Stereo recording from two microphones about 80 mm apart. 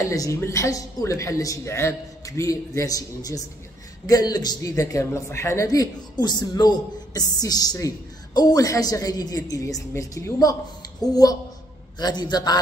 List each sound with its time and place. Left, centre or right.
0.1 s a woman's voice: left
5.7 s a woman's voice: left
11.0 s a woman's voice: left